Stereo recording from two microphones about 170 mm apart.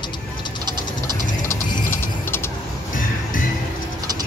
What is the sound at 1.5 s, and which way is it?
Music, 15° left (ahead or behind).